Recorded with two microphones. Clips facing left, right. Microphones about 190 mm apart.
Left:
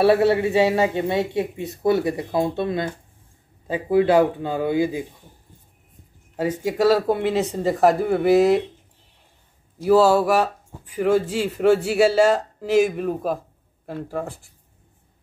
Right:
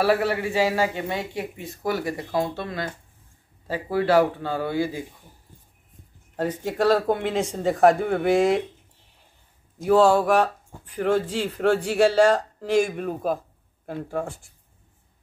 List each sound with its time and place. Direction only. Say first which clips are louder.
0.0 s a man's voice: left 5 dB; 25° left (ahead or behind)
6.3 s speech: left 3 dB; 10° left (ahead or behind)
9.8 s speech: left 2 dB; 5° left (ahead or behind)